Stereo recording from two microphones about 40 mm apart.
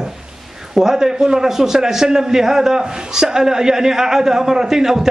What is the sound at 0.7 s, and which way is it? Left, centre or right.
A man's voice, centre.